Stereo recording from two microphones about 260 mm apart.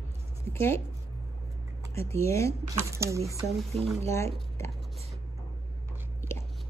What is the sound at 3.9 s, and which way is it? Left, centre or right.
Speech, centre.